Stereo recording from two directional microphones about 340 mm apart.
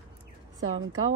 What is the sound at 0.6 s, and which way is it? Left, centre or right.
Speech, right.